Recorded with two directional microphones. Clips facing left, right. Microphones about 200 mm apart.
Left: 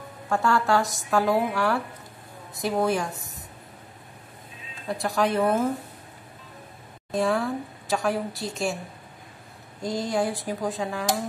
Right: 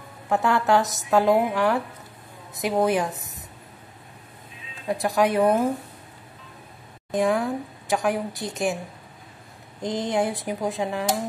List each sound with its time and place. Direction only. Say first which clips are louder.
0.3 s a woman's voice: right 2 dB; 20° right (ahead or behind)
5.0 s a woman's voice: right 3 dB; 20° right (ahead or behind)
7.1 s speech: right 2 dB; 15° right (ahead or behind)
9.8 s a woman's voice: right 2 dB; 20° right (ahead or behind)